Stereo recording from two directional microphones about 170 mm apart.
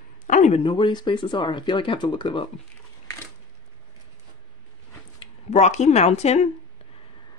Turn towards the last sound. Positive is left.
turn(degrees=40)  # may be behind; listen again after turning